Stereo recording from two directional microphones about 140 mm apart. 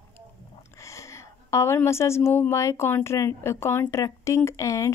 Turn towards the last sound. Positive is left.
turn(degrees=20)  # may be behind; listen again after turning